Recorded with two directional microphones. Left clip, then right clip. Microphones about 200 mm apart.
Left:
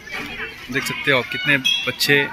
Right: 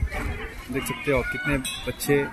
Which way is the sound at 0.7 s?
Centre (ahead or behind).